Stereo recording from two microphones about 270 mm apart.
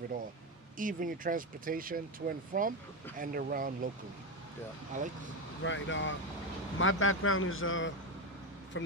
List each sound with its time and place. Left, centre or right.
0.7 s speech: right
5.6 s speech: left